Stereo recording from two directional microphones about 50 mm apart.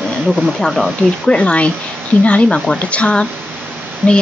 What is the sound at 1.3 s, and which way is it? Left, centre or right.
Speech, left.